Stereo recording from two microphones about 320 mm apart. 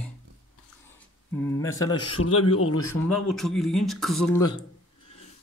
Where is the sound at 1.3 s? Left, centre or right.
Centre.